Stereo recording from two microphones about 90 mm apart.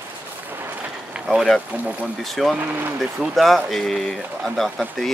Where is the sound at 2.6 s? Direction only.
25° right (ahead or behind).